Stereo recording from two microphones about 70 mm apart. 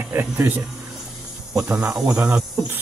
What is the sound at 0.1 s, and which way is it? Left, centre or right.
Speech, right.